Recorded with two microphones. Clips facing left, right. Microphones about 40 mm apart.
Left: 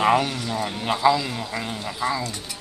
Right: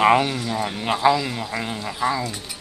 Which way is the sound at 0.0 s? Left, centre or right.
Centre.